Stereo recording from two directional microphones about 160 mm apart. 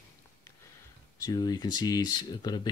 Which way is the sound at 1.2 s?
25° left (ahead or behind).